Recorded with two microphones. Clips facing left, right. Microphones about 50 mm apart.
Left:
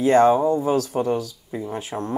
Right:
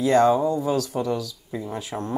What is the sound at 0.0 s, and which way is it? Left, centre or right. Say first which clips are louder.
Speech: left 2 dB; left.